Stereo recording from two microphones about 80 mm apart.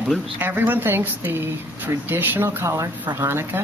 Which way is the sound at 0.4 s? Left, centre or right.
Right.